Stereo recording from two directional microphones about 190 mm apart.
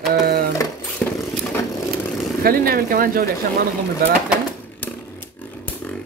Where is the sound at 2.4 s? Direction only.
50° right (ahead or behind).